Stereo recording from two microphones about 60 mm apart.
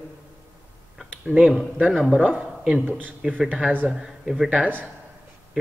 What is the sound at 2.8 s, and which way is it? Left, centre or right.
A man's voice, right.